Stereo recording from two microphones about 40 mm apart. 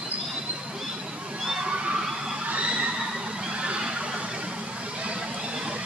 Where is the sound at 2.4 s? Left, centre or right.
Right.